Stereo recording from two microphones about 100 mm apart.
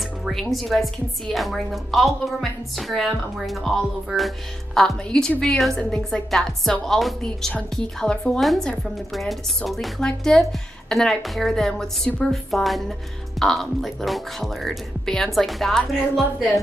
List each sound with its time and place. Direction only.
0.2 s a woman's voice: centre (ahead or behind)